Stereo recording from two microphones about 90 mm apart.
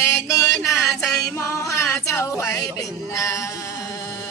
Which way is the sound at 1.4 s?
30° left (ahead or behind).